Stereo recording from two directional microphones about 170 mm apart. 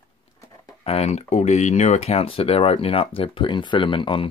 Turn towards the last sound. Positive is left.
turn(degrees=30)  # may be behind; listen again after turning